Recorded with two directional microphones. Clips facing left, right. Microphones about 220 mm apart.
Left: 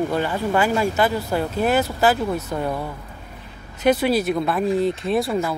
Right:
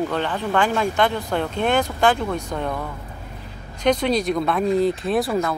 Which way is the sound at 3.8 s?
5° left (ahead or behind).